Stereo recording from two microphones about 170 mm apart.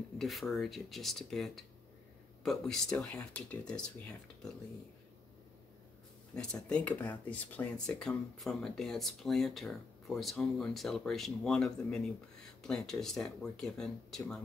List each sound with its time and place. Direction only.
0.2 s speech: centre (ahead or behind)
6.3 s speech: 5° left (ahead or behind)